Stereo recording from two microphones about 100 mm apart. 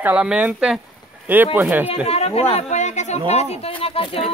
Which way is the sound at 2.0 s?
90° left.